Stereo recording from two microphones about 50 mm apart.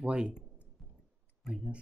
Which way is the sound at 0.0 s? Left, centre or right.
Centre.